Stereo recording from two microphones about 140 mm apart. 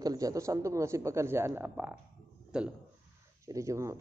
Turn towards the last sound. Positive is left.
turn(degrees=-20)  # may be behind; listen again after turning